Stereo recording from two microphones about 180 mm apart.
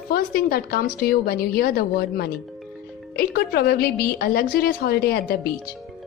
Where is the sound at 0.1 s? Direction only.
55° left (ahead or behind).